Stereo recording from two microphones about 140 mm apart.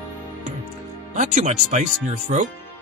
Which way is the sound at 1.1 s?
60° right (ahead or behind).